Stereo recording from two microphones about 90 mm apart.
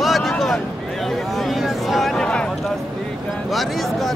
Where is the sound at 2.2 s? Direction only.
10° left (ahead or behind).